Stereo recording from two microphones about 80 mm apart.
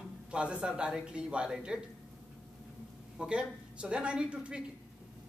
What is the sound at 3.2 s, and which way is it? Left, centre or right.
Speech, centre.